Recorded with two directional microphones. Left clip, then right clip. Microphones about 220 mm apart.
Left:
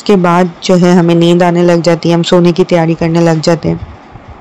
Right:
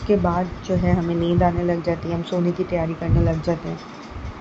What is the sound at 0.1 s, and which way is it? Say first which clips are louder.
A woman's voice: left 12 dB; 40° left (ahead or behind).